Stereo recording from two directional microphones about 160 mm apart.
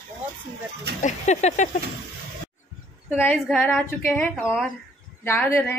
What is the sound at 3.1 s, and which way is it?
A woman's voice, 10° left (ahead or behind).